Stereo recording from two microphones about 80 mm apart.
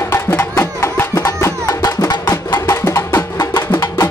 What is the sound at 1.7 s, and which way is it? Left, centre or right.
Music, left.